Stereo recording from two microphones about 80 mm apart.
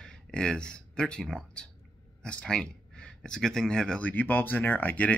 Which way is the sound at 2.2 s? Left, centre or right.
Centre.